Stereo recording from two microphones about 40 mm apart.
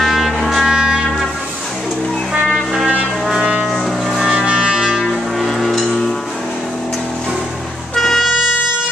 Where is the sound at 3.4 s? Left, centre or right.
Right.